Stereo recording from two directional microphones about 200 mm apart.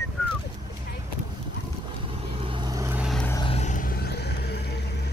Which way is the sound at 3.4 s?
35° left (ahead or behind).